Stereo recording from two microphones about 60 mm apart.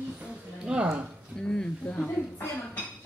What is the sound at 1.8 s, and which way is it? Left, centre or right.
Speech, left.